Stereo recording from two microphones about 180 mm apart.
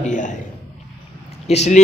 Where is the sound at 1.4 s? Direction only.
40° left (ahead or behind).